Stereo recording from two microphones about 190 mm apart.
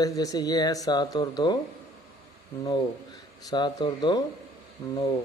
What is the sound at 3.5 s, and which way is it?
Speech, 25° left (ahead or behind).